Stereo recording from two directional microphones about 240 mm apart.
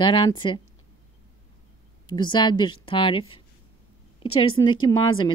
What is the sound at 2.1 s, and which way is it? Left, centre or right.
A woman's voice, centre.